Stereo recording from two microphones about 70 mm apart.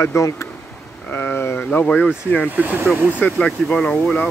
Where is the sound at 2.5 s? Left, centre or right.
Right.